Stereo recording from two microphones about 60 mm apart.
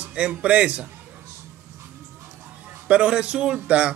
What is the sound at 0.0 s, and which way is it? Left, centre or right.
Speech, centre.